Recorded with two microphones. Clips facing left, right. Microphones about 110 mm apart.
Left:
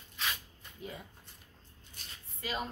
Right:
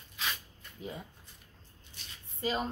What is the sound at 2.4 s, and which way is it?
Speech, 30° right (ahead or behind).